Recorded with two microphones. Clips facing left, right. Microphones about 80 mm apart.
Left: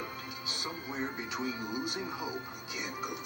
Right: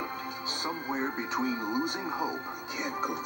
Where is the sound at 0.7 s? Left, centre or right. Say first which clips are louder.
Right 5 dB; right.